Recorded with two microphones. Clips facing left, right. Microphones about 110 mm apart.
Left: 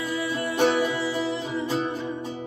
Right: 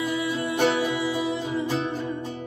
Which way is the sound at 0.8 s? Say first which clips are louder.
Right 1 dB; 20° right (ahead or behind).